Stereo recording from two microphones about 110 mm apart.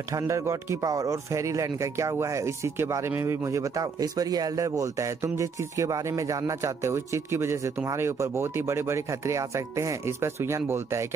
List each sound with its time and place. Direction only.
0.1 s speech: 25° right (ahead or behind)